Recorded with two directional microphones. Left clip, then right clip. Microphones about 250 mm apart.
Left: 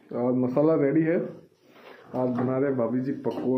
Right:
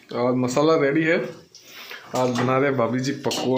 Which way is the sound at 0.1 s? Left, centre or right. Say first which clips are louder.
Right 4 dB; centre.